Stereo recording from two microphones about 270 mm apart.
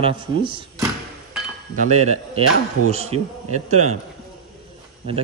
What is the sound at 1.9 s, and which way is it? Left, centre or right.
A man's voice, right.